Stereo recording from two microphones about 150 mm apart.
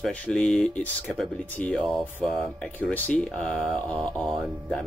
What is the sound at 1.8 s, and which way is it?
Speech, centre (ahead or behind).